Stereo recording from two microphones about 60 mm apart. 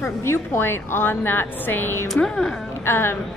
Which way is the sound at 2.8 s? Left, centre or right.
Left.